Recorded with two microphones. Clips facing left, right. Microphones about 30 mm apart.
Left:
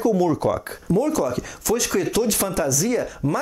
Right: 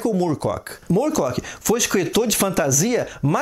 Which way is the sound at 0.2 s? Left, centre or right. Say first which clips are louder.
Left 2 dB; right.